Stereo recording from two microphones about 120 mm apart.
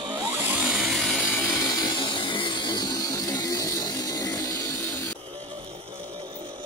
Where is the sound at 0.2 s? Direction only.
15° right (ahead or behind).